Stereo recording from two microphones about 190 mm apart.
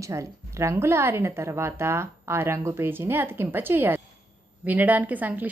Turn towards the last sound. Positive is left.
turn(degrees=-10)  # may be behind; listen again after turning